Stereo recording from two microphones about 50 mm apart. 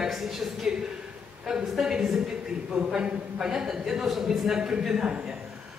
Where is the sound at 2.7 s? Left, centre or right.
Right.